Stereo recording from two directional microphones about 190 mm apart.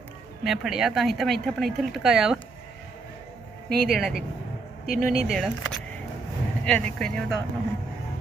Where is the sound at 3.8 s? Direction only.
Centre (ahead or behind).